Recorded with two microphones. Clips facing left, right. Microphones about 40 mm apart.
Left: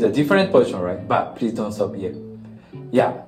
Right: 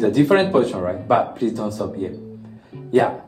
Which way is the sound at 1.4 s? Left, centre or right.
Left.